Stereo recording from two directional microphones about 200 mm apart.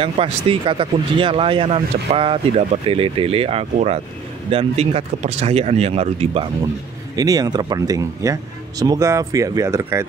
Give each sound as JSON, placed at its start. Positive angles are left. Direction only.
{"t": 0.0, "sound": "speech", "side_deg": -25}
{"t": 7.2, "sound": "speech", "side_deg": -20}